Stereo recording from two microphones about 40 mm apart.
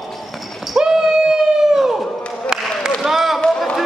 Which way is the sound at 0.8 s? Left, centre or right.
Centre.